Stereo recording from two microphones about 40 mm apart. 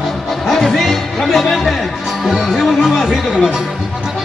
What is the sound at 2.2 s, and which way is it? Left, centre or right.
Music, centre.